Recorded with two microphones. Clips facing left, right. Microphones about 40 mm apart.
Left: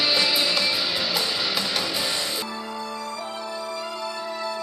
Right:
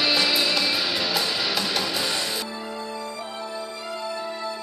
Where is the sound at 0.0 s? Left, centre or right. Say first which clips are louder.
Even; centre.